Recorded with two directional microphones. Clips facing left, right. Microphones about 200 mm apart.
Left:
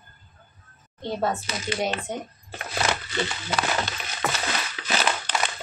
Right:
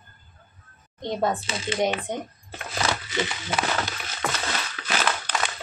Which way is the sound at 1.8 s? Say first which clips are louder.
Right 4 dB; 15° right (ahead or behind).